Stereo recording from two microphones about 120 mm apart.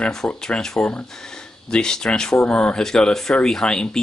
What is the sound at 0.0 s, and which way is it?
Speech, 5° left (ahead or behind).